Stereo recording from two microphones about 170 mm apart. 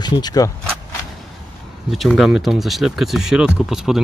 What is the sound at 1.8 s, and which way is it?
Speech, centre (ahead or behind).